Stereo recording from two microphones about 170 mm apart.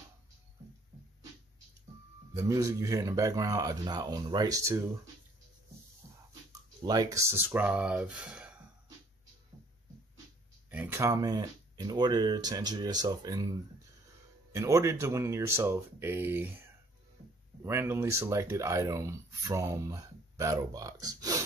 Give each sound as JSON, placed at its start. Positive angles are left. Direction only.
{"t": 2.3, "sound": "speech", "side_deg": -20}
{"t": 6.8, "sound": "speech", "side_deg": -20}
{"t": 10.7, "sound": "speech", "side_deg": -10}